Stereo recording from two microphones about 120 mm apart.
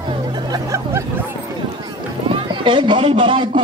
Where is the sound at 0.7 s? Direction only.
25° right (ahead or behind).